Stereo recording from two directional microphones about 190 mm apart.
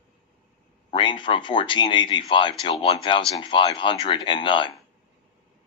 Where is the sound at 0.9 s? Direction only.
25° left (ahead or behind).